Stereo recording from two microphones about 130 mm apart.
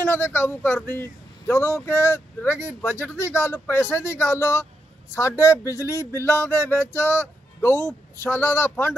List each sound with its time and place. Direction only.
0.0 s speech: 15° left (ahead or behind)